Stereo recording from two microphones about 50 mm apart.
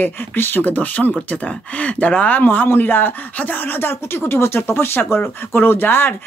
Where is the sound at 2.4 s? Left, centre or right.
Left.